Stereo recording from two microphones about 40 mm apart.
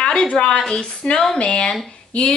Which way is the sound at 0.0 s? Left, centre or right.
Left.